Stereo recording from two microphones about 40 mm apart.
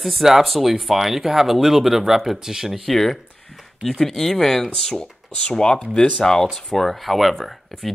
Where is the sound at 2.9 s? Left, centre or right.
Centre.